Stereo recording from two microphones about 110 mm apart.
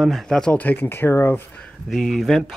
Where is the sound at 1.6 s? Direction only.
Centre (ahead or behind).